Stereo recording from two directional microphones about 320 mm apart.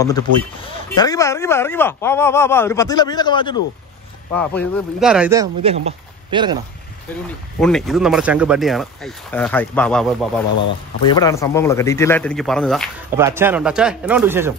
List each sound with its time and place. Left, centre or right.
0.3 s speech: right
0.7 s speech: centre
7.6 s speech: centre